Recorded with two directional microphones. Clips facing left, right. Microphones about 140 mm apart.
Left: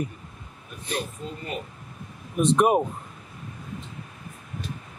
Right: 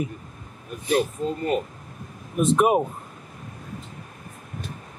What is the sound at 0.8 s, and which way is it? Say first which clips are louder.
Speech: right 9 dB; 50° right (ahead or behind).